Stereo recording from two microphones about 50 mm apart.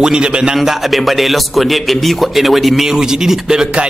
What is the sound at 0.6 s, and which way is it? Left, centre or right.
Speech, centre.